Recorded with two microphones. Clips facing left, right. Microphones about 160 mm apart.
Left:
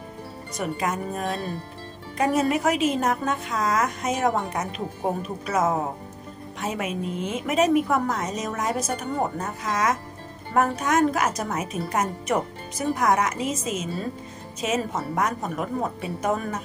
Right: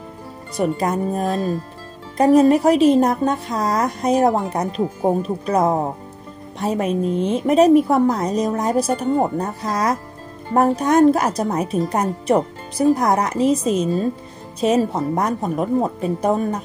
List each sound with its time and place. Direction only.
0.6 s a woman's voice: 35° right (ahead or behind)